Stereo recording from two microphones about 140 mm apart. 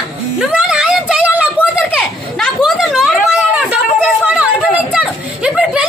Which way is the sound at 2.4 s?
5° left (ahead or behind).